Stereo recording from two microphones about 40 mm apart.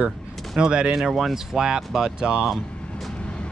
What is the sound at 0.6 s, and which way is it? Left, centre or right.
Speech, right.